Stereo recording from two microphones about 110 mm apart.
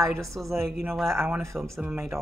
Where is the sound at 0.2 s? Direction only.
Centre (ahead or behind).